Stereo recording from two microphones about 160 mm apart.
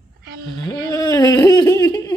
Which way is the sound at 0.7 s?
20° left (ahead or behind).